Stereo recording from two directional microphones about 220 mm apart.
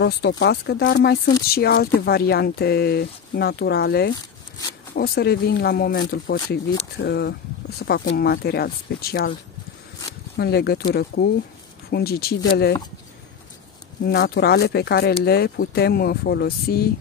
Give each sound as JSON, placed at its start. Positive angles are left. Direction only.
{"t": 0.0, "sound": "speech", "side_deg": 50}
{"t": 10.3, "sound": "speech", "side_deg": 45}
{"t": 14.0, "sound": "speech", "side_deg": 45}